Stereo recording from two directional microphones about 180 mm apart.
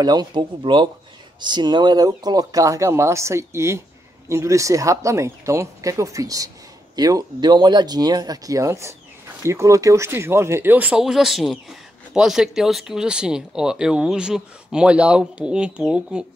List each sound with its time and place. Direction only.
0.0 s speech: 20° right (ahead or behind); by 16.3 s 5° right (ahead or behind)